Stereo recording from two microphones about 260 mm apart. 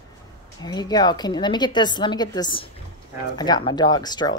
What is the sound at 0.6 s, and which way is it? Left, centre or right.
Speech, centre.